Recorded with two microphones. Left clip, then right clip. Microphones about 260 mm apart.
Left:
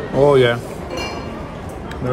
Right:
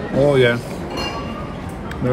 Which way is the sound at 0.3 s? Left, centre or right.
Centre.